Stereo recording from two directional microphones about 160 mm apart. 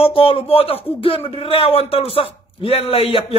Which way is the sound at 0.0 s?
35° left (ahead or behind).